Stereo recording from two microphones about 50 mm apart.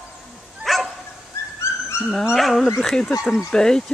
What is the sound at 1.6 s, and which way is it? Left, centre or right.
Dog, left.